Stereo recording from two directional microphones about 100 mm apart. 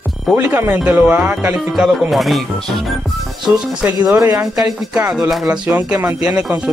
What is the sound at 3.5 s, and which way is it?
Speech, 10° right (ahead or behind).